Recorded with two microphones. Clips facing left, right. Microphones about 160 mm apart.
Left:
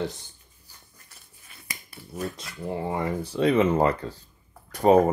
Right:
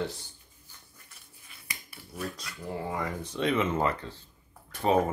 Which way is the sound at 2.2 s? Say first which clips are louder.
Left 5 dB; 25° left (ahead or behind).